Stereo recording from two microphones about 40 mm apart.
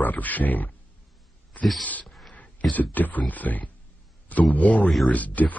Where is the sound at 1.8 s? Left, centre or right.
Left.